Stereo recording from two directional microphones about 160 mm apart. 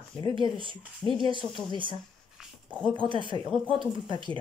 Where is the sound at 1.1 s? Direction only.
30° right (ahead or behind).